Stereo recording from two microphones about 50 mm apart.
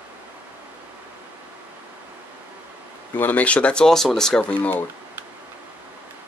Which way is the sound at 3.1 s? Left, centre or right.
Left.